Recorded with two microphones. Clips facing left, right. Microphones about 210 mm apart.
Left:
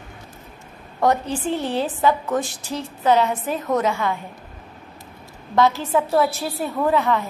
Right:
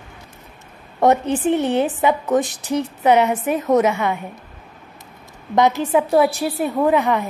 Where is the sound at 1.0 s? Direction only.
20° right (ahead or behind).